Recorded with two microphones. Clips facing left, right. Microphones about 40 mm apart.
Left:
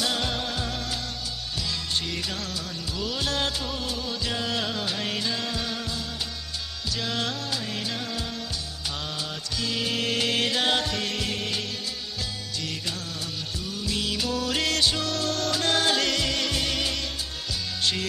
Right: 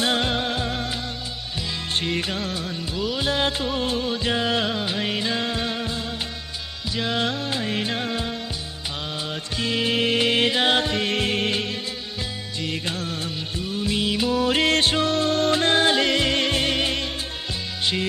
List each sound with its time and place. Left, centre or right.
0.0 s music: right
2.0 s music: right
3.0 s music: centre
9.6 s music: right
12.6 s music of bollywood: right